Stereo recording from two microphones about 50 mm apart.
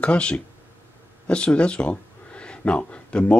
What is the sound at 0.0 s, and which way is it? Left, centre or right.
Speech, left.